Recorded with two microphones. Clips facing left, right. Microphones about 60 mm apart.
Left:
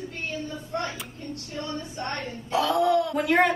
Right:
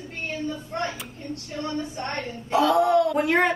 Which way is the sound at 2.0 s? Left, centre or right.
Right.